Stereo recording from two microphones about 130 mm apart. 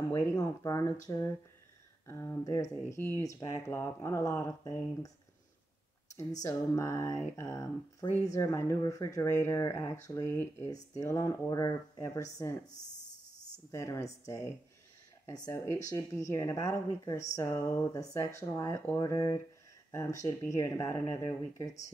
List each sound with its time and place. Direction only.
0.2 s speech: 25° left (ahead or behind)
6.1 s speech: 25° left (ahead or behind)
13.7 s speech: 25° left (ahead or behind)